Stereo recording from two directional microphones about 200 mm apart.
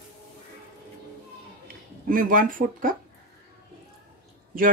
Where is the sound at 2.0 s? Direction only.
45° right (ahead or behind).